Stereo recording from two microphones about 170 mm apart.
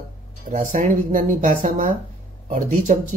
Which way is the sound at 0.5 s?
50° right (ahead or behind).